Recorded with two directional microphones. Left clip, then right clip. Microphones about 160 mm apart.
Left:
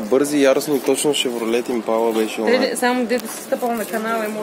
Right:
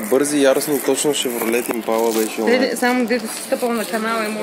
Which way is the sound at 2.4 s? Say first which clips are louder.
Right 1 dB; 30° right (ahead or behind).